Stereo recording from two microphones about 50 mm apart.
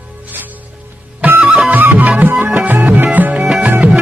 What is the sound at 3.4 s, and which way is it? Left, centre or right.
Music, centre.